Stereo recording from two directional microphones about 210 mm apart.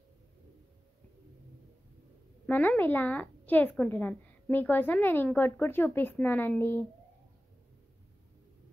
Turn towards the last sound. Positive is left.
turn(degrees=10)  # may be behind; listen again after turning